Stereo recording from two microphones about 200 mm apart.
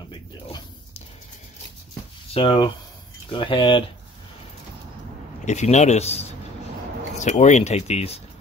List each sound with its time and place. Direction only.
2.3 s speech: 25° left (ahead or behind)
5.4 s a man's voice: 35° left (ahead or behind)